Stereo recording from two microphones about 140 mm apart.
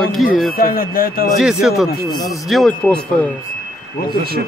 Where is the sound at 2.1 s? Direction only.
30° left (ahead or behind).